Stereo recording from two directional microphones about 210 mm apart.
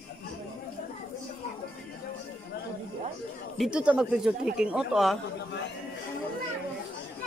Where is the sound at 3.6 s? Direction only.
5° right (ahead or behind).